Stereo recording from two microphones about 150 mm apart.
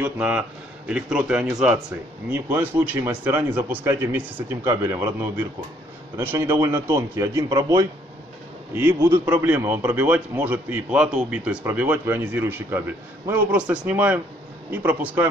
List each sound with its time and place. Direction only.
0.0 s a man's voice: 10° right (ahead or behind)